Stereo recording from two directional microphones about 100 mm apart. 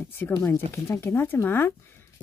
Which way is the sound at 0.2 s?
25° left (ahead or behind).